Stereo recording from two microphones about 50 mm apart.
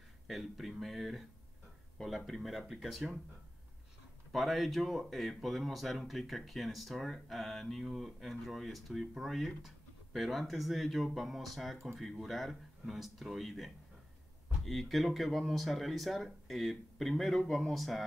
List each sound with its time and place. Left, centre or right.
0.3 s speech: centre
4.3 s speech: centre